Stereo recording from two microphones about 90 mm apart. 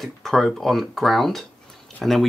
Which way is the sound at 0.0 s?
5° left (ahead or behind).